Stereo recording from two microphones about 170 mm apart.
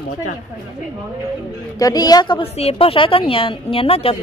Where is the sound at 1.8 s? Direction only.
20° left (ahead or behind).